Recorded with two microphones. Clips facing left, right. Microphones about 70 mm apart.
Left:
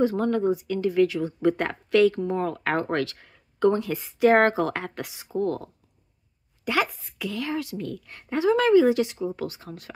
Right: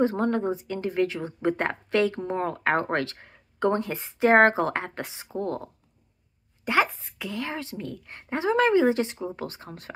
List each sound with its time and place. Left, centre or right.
0.0 s speech: right